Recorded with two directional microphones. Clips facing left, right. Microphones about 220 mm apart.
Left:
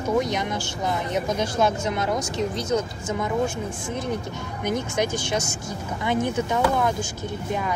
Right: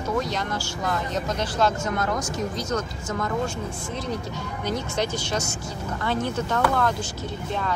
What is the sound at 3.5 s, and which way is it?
Speech, 55° left (ahead or behind).